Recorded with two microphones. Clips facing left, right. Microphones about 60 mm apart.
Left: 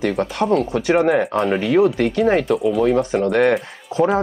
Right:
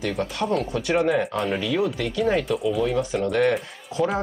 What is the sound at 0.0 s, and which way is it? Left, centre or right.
Speech, left.